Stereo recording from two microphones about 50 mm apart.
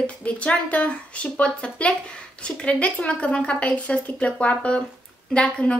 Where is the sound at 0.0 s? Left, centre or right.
Left.